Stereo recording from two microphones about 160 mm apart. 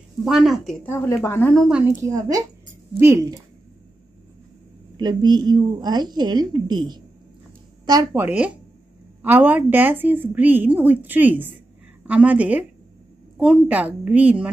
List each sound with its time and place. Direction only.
0.2 s a woman's voice: 5° right (ahead or behind)
0.8 s speech: 15° left (ahead or behind)
1.5 s a woman's voice: centre (ahead or behind); by 3.3 s 20° right (ahead or behind)
4.9 s a woman's voice: 25° right (ahead or behind); by 12.6 s 10° right (ahead or behind)
13.7 s a woman's voice: 10° right (ahead or behind)